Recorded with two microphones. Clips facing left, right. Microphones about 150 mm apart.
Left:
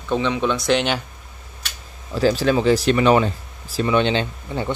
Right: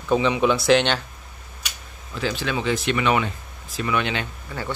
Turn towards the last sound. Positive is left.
turn(degrees=25)  # may be behind; listen again after turning